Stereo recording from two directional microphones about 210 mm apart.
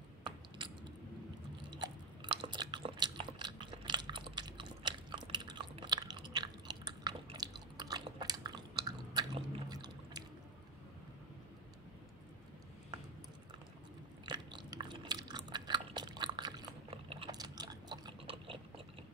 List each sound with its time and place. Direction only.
1.8 s chewing: 25° right (ahead or behind)
14.2 s biting: 20° right (ahead or behind)